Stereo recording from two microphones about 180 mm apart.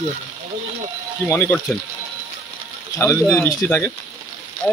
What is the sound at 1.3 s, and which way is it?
Speech, 15° left (ahead or behind).